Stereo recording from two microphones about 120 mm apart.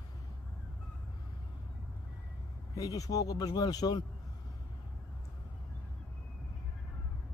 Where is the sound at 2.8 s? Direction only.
30° left (ahead or behind).